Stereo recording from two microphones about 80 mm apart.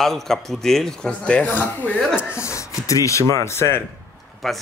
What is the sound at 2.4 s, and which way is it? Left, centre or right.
Speech, left.